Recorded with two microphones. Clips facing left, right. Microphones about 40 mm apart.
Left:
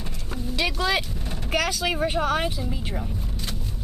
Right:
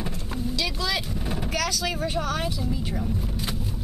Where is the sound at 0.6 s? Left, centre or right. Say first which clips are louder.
Left 5 dB; left.